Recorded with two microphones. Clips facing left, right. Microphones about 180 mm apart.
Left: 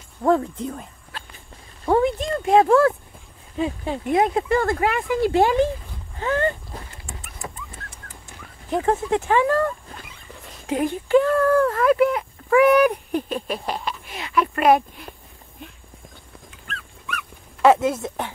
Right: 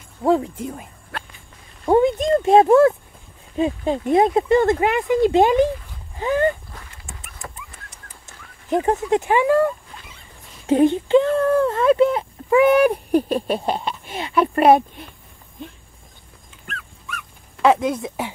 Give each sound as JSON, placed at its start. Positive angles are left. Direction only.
{"t": 0.2, "sound": "speech", "side_deg": -15}
{"t": 1.1, "sound": "walk", "side_deg": -60}
{"t": 1.9, "sound": "a sound", "side_deg": -20}
{"t": 3.5, "sound": "speech", "side_deg": -20}
{"t": 6.7, "sound": "dog", "side_deg": 25}
{"t": 7.4, "sound": "dog", "side_deg": 10}
{"t": 8.6, "sound": "speech", "side_deg": -20}
{"t": 10.7, "sound": "speech", "side_deg": -25}
{"t": 17.6, "sound": "speech", "side_deg": 0}